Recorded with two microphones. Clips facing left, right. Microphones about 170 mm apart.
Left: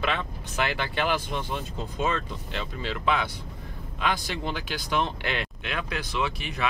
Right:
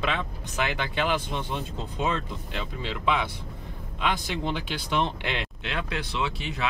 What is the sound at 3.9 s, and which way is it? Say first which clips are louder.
Speech: even; 20° right (ahead or behind).